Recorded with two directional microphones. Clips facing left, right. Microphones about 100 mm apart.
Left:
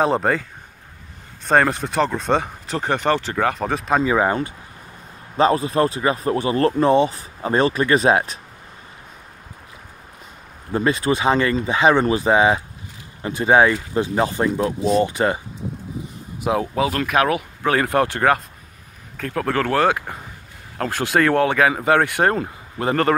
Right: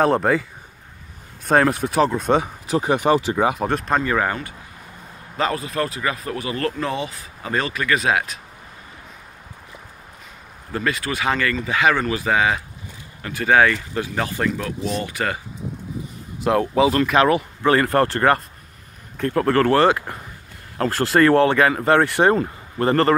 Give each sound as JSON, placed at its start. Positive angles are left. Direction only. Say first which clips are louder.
{"t": 0.0, "sound": "speech", "louder": "right 1 dB", "side_deg": 0}
{"t": 3.6, "sound": "speech", "louder": "even", "side_deg": 0}
{"t": 4.0, "sound": "speech", "louder": "left 3 dB", "side_deg": 15}
{"t": 10.7, "sound": "speech", "louder": "left 5 dB", "side_deg": 25}
{"t": 16.4, "sound": "speech", "louder": "right 3 dB", "side_deg": 5}